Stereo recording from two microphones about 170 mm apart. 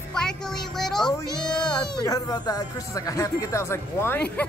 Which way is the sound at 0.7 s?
5° left (ahead or behind).